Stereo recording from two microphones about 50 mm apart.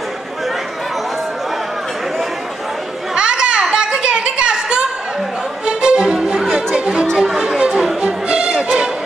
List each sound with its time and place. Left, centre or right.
3.2 s a sound: centre
5.7 s music: centre
6.7 s chatter: centre
7.2 s music: centre